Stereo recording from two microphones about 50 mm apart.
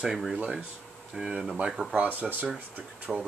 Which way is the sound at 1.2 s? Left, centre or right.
Centre.